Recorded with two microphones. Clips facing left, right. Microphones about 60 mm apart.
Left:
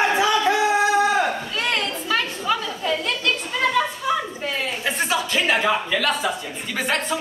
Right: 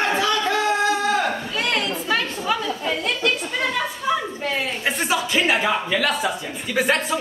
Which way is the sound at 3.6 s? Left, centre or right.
Centre.